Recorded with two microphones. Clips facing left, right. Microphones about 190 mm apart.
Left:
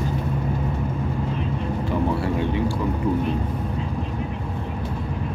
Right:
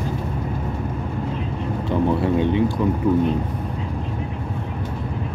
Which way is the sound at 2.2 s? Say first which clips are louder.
Right 5 dB; 20° right (ahead or behind).